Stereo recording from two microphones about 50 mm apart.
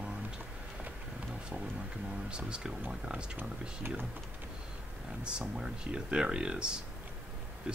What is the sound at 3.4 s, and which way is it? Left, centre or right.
Speech, right.